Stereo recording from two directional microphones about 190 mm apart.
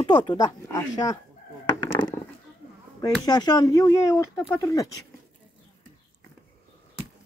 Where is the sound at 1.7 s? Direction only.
25° left (ahead or behind).